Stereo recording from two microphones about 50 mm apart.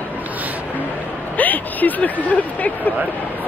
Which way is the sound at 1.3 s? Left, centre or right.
Left.